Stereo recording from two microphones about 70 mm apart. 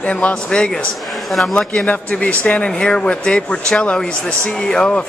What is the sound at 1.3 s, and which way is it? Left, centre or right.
Speech, centre.